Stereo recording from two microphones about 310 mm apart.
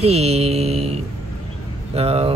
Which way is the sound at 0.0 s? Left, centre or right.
Centre.